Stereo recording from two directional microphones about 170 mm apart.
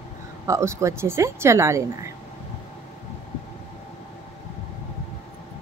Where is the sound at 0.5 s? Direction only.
15° right (ahead or behind).